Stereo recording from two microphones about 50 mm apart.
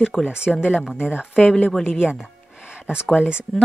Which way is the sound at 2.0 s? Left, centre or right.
Centre.